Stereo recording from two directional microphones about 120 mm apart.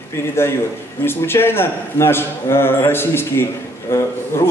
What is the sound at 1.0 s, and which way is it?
A man's voice, 20° left (ahead or behind).